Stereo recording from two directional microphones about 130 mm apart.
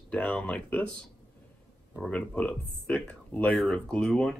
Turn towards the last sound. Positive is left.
turn(degrees=5)  # may be behind; listen again after turning